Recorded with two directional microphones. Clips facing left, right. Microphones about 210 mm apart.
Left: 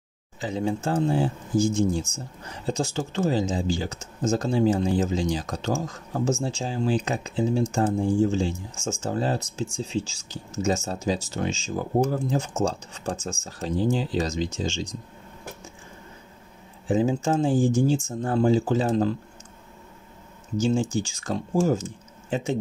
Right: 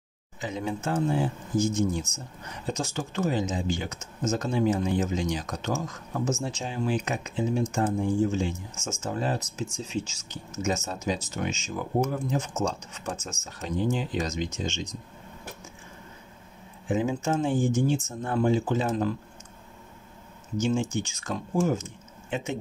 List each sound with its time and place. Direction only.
0.4 s speech: 30° left (ahead or behind)
16.8 s speech: 30° left (ahead or behind)
20.5 s speech: 30° left (ahead or behind)